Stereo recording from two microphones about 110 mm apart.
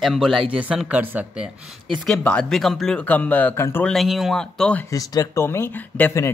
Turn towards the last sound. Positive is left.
turn(degrees=25)  # may be behind; listen again after turning